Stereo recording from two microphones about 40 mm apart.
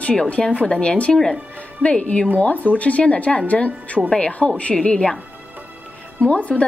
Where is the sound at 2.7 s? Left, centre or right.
Left.